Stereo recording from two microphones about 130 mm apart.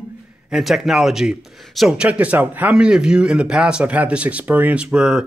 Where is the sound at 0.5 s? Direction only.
Centre (ahead or behind).